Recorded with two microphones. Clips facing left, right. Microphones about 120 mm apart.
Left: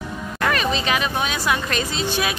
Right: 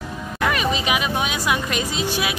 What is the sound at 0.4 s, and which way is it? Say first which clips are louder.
Speech: even; 10° right (ahead or behind).